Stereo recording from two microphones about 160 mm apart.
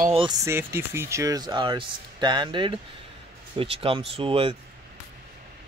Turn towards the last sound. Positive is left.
turn(degrees=-35)  # may be behind; listen again after turning